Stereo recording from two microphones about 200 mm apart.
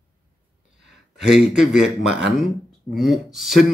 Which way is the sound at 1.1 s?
5° right (ahead or behind).